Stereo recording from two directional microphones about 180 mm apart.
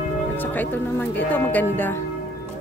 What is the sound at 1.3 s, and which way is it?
Speech, 10° left (ahead or behind).